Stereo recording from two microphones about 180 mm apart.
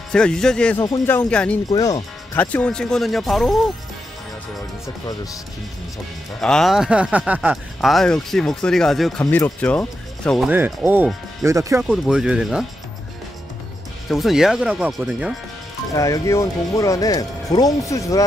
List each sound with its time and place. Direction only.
0.1 s speech: 5° left (ahead or behind)
1.7 s speech: 20° left (ahead or behind)
2.3 s speech: 10° left (ahead or behind)
6.4 s speech: centre (ahead or behind)
9.2 s speech: 15° left (ahead or behind)
10.5 s speech: 10° right (ahead or behind)
11.8 s speech: centre (ahead or behind)
14.0 s speech: centre (ahead or behind)
15.9 s speech: 20° left (ahead or behind)